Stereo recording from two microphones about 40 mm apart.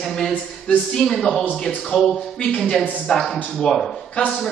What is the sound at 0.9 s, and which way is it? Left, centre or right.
Speech, centre.